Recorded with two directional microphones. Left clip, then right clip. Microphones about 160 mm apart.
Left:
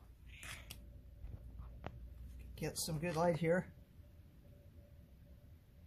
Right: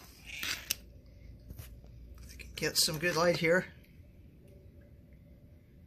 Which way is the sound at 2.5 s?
5° left (ahead or behind).